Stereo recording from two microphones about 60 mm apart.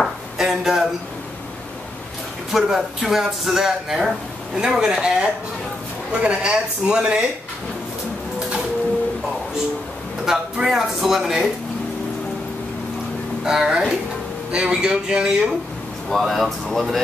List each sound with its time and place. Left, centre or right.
0.4 s a sound: centre
2.5 s speech: centre
10.2 s speech: centre
13.4 s speech: centre
16.1 s speech: centre